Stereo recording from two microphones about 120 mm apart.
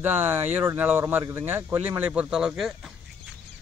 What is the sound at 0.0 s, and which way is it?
Speech, 15° right (ahead or behind).